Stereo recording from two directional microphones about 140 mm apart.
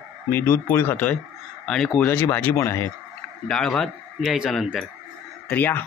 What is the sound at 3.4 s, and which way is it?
Speech, 5° left (ahead or behind).